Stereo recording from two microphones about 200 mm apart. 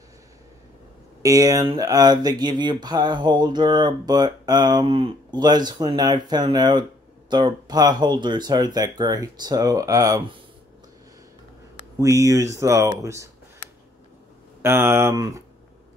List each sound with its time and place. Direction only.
1.2 s speech: 15° right (ahead or behind)
12.0 s speech: 15° right (ahead or behind)
14.6 s speech: 10° right (ahead or behind)